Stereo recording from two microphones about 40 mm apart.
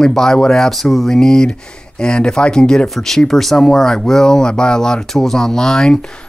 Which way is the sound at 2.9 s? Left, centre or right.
Centre.